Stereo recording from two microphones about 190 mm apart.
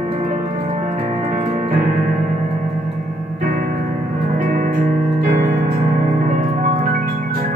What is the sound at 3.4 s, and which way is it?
Music, 50° right (ahead or behind).